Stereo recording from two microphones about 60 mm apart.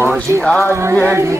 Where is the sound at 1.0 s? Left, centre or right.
Right.